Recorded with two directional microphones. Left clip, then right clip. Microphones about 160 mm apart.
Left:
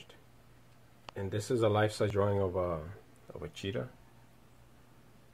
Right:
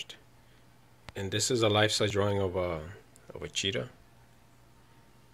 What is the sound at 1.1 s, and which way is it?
Speech, 10° right (ahead or behind).